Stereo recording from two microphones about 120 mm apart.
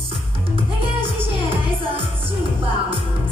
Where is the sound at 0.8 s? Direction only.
50° right (ahead or behind).